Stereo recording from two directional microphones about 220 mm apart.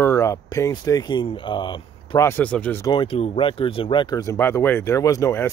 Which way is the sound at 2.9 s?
25° left (ahead or behind).